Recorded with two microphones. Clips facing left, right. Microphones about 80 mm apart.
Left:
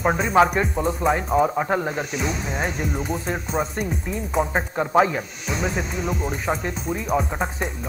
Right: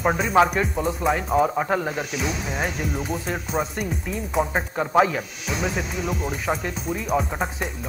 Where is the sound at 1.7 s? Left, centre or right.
Left.